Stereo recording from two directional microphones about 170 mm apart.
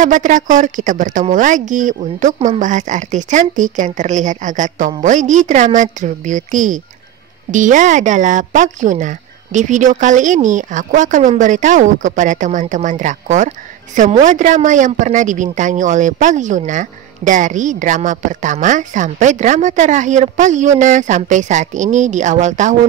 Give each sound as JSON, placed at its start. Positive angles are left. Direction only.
{"t": 0.0, "sound": "a woman's voice", "side_deg": -50}